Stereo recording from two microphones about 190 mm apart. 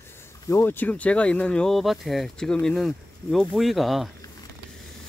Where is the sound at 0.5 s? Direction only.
10° left (ahead or behind).